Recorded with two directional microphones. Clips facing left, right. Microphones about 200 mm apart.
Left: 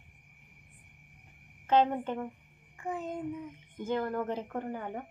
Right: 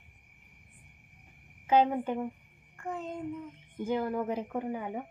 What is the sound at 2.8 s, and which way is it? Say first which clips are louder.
Speech: left 1 dB; 5° left (ahead or behind).